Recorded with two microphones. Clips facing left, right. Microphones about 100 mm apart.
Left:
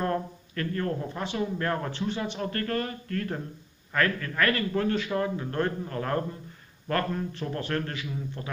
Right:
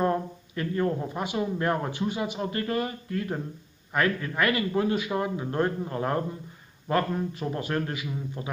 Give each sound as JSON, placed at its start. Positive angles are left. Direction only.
{"t": 0.0, "sound": "a man's voice", "side_deg": -15}